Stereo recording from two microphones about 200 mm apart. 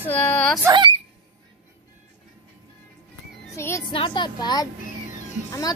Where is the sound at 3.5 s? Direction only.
10° left (ahead or behind).